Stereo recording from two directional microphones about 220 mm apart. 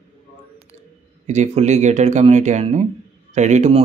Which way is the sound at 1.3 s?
30° right (ahead or behind).